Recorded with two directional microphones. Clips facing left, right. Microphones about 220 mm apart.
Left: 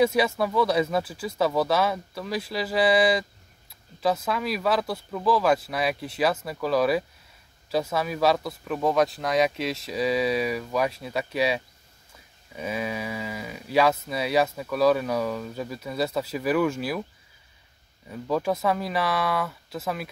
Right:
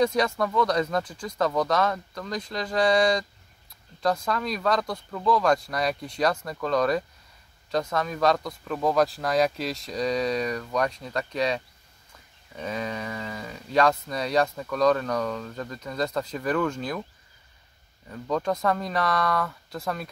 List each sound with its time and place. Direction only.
0.0 s speech: 5° left (ahead or behind)
18.0 s speech: 10° left (ahead or behind)